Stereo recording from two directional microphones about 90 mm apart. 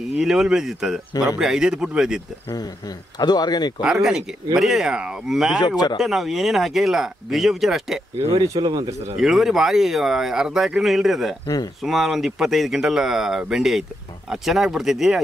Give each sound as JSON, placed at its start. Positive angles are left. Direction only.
{"t": 0.2, "sound": "speech", "side_deg": -5}
{"t": 3.2, "sound": "a man's voice", "side_deg": 50}
{"t": 3.8, "sound": "speech", "side_deg": -5}
{"t": 8.3, "sound": "speech", "side_deg": -50}
{"t": 9.1, "sound": "speech", "side_deg": -5}
{"t": 11.4, "sound": "a man's voice", "side_deg": 45}
{"t": 11.8, "sound": "speech", "side_deg": 0}